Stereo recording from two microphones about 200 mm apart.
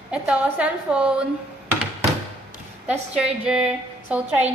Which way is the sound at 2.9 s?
5° right (ahead or behind).